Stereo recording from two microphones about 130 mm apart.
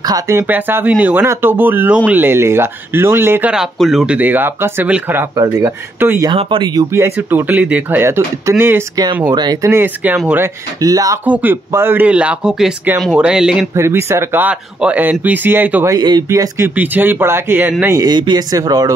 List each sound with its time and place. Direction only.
0.0 s speech: 25° right (ahead or behind)
3.5 s speech: 5° right (ahead or behind)
5.3 s speech: 25° right (ahead or behind)
6.3 s speech: 45° right (ahead or behind)
6.7 s speech: 25° right (ahead or behind)
9.3 s speech: 30° right (ahead or behind)
9.7 s speech: 20° right (ahead or behind)
10.8 s speech: 25° right (ahead or behind)
11.2 s speech: 15° right (ahead or behind)
13.7 s speech: 20° right (ahead or behind)
15.9 s speech: 30° right (ahead or behind)
16.3 s speech: 20° right (ahead or behind)
17.9 s speech: 35° right (ahead or behind)